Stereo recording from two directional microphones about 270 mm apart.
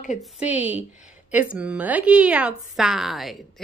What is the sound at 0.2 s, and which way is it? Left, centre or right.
A woman's voice, centre.